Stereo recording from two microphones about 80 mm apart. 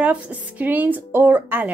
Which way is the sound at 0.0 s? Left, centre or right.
Centre.